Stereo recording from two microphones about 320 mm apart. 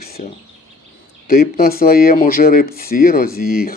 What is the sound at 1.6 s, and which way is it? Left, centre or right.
Speech, left.